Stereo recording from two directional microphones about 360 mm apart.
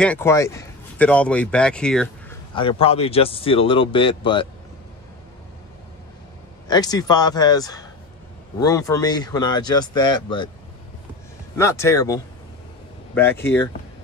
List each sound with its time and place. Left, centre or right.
0.0 s speech: centre
2.5 s speech: centre
6.7 s speech: centre
11.5 s speech: centre